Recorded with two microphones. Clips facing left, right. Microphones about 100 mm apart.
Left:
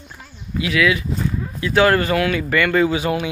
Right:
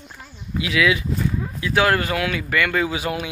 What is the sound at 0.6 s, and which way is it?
Speech, 15° right (ahead or behind).